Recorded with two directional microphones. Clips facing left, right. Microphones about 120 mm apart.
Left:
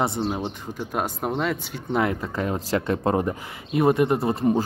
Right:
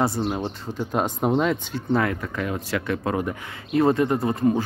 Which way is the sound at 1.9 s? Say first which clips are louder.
Even; 20° left (ahead or behind).